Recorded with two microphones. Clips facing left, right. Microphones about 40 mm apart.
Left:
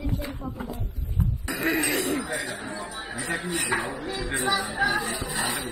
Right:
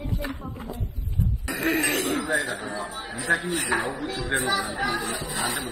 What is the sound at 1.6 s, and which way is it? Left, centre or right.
Throat clearing, right.